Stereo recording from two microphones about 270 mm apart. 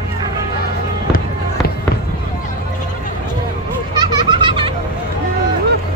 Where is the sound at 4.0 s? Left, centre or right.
Centre.